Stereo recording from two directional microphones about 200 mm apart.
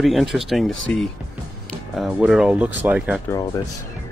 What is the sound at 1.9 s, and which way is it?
Speech, centre (ahead or behind).